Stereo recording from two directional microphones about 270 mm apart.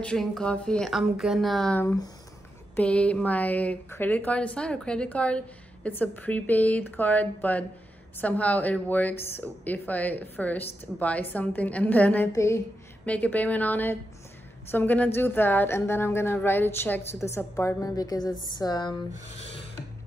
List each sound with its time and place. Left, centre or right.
0.0 s a woman's voice: centre
19.5 s rub: left